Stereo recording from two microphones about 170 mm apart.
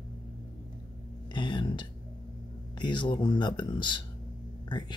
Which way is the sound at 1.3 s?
25° left (ahead or behind).